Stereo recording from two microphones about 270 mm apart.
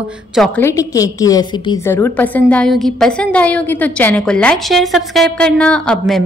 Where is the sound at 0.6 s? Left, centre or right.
Centre.